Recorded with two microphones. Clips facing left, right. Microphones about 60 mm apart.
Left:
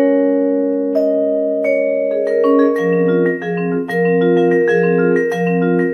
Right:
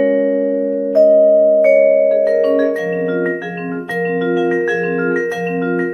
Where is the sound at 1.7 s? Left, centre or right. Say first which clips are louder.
Right 5 dB; right.